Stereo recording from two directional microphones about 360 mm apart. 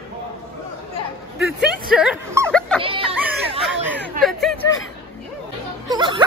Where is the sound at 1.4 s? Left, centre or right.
Centre.